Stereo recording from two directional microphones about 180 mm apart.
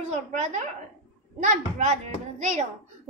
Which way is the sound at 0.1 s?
45° right (ahead or behind).